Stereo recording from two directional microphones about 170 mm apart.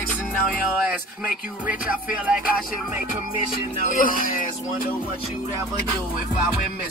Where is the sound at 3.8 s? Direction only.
50° left (ahead or behind).